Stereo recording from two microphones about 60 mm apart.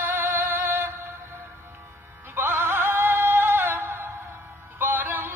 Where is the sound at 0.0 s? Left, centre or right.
Right.